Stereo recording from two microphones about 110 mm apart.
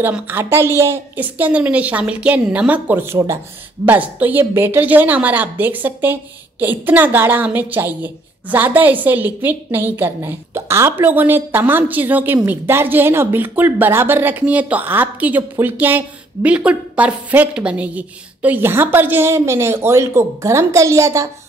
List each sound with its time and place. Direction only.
0.1 s speech: 20° right (ahead or behind)